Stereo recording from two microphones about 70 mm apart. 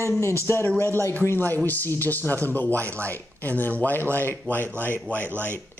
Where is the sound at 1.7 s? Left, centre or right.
Left.